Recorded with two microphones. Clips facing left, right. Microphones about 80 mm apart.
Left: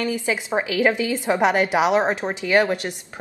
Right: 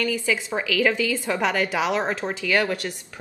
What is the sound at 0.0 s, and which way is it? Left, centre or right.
Speech, left.